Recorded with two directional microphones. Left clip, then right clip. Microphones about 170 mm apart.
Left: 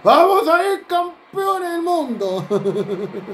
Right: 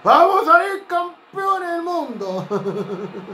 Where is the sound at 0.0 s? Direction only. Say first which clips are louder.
Left 1 dB; 45° left (ahead or behind).